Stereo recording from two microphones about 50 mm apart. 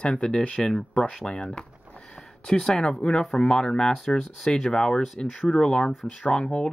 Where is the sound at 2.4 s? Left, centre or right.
Centre.